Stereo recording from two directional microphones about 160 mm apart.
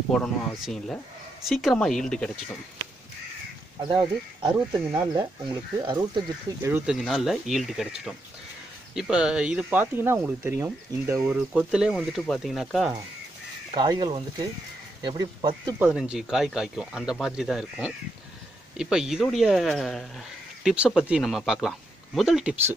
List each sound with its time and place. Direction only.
0.1 s speech: 5° left (ahead or behind)
3.8 s speech: 25° right (ahead or behind)
6.9 s speech: centre (ahead or behind); by 11.2 s 20° right (ahead or behind)
11.2 s speech: 5° right (ahead or behind)
13.7 s speech: 30° right (ahead or behind)
15.8 s speech: 5° right (ahead or behind)